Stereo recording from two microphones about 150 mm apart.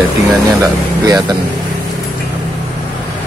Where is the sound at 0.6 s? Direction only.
25° right (ahead or behind).